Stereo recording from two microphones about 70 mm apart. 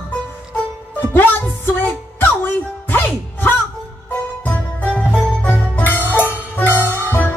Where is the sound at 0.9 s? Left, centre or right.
Left.